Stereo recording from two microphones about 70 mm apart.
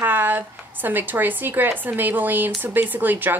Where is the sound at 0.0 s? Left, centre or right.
Right.